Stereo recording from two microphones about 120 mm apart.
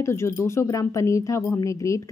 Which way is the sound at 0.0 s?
20° left (ahead or behind).